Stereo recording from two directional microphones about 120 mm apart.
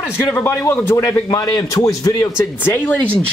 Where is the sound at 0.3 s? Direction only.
20° left (ahead or behind).